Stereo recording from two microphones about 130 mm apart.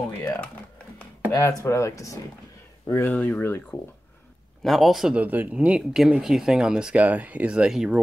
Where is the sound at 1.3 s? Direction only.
20° left (ahead or behind).